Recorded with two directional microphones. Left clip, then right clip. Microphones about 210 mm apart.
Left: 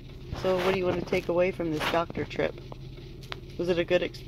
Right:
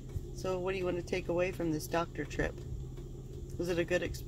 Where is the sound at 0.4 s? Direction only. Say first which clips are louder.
Left 9 dB; 40° left (ahead or behind).